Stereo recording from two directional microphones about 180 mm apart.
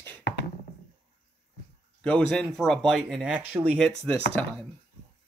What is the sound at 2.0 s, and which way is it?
Speech, 5° left (ahead or behind).